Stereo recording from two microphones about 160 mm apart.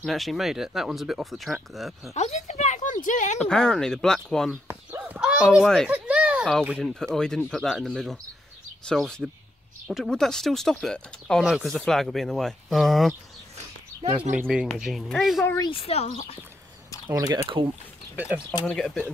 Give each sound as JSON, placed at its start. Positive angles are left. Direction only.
{"t": 0.0, "sound": "speech", "side_deg": 0}
{"t": 2.1, "sound": "a woman's voice", "side_deg": 45}
{"t": 3.3, "sound": "speech", "side_deg": 5}
{"t": 4.6, "sound": "a sound", "side_deg": -10}
{"t": 5.9, "sound": "a sound", "side_deg": -10}
{"t": 6.6, "sound": "speech", "side_deg": -5}
{"t": 7.0, "sound": "speech", "side_deg": 5}
{"t": 14.3, "sound": "speech", "side_deg": -5}
{"t": 15.4, "sound": "speech", "side_deg": 20}
{"t": 15.7, "sound": "speech", "side_deg": 40}
{"t": 17.1, "sound": "speech", "side_deg": -25}
{"t": 18.1, "sound": "speech", "side_deg": -10}
{"t": 18.7, "sound": "speech", "side_deg": 5}